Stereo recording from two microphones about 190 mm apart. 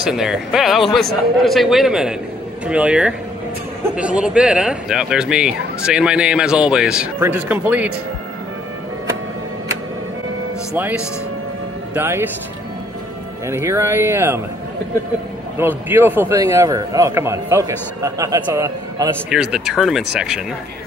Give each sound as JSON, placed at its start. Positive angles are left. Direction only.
{"t": 0.0, "sound": "speech", "side_deg": -5}
{"t": 11.9, "sound": "a man's voice", "side_deg": -10}
{"t": 13.5, "sound": "a man's voice", "side_deg": -15}
{"t": 15.6, "sound": "a man's voice", "side_deg": -10}